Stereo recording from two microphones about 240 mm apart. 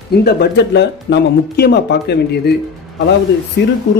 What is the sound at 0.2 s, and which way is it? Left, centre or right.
Speech, left.